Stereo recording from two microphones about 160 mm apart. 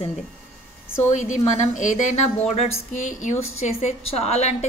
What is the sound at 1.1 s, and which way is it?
Speech, 50° left (ahead or behind).